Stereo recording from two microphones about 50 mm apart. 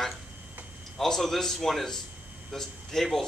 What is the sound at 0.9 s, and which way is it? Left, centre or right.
Speech, centre.